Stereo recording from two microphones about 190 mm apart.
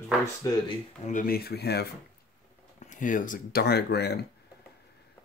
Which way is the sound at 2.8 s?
40° left (ahead or behind).